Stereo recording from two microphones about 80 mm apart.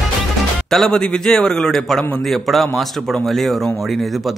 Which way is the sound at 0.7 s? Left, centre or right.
Centre.